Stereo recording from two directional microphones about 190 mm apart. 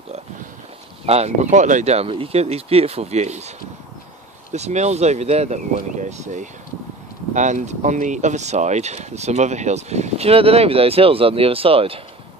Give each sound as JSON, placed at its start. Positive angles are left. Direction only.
{"t": 1.0, "sound": "speech", "side_deg": -35}